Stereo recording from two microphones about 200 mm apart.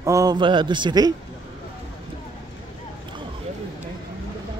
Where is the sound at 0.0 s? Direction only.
15° right (ahead or behind).